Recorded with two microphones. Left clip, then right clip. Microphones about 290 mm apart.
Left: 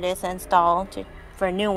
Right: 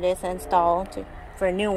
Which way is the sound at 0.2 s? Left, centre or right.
Left.